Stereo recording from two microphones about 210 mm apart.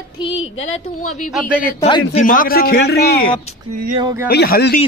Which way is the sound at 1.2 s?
5° right (ahead or behind).